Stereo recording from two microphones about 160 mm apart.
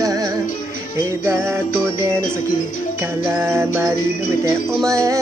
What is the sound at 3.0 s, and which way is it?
Music, 15° right (ahead or behind).